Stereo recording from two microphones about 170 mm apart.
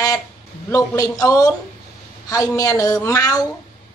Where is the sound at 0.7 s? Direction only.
20° left (ahead or behind).